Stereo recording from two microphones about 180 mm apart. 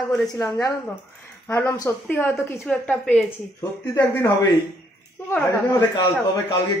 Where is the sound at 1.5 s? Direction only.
15° left (ahead or behind).